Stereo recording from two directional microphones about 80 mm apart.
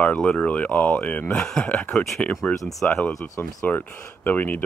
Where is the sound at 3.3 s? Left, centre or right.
Left.